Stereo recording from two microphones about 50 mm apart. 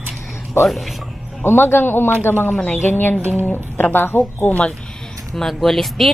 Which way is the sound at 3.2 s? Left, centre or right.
Right.